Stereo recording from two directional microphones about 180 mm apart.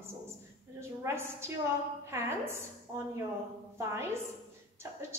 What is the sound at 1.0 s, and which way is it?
A woman's voice, 15° right (ahead or behind).